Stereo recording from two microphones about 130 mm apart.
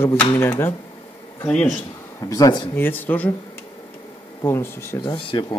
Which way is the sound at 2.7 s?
15° left (ahead or behind).